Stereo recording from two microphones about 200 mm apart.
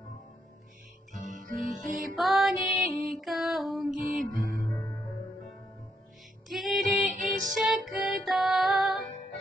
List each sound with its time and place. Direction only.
1.6 s music: 40° right (ahead or behind)
2.1 s music: centre (ahead or behind)
6.5 s female singing: centre (ahead or behind)
7.5 s music: centre (ahead or behind)